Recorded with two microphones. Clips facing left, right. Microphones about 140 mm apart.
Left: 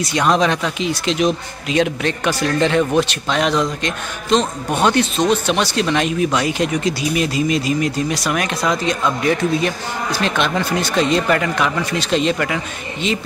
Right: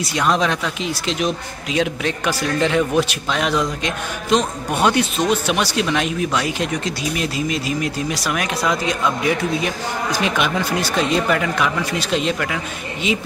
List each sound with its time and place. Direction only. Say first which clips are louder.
0.0 s speech: left 3 dB; centre (ahead or behind)